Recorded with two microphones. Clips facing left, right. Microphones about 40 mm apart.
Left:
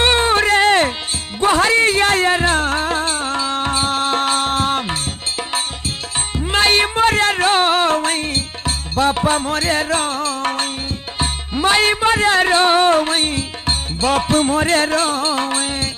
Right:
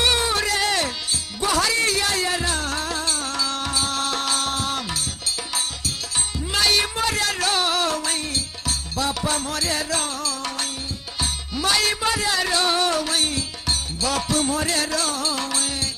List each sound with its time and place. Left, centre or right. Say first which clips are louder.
0.0 s a sound: left 7 dB; left
1.4 s music: left 8 dB; left
6.3 s music: left 6 dB; left